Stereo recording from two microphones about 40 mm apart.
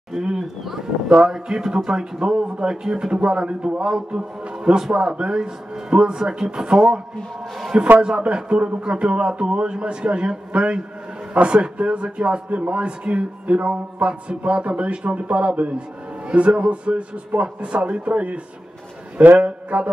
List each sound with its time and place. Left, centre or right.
0.1 s a sound: centre
1.2 s a man's voice: centre
8.0 s a man's voice: right